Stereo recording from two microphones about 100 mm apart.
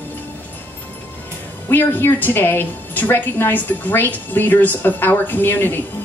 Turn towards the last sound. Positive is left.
turn(degrees=20)  # may be behind; listen again after turning